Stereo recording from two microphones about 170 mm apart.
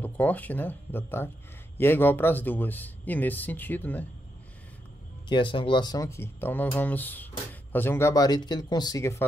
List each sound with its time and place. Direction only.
0.0 s speech: 10° left (ahead or behind)
5.3 s speech: 30° left (ahead or behind)